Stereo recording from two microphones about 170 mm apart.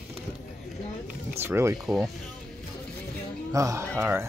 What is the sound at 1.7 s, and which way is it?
Speech, centre (ahead or behind).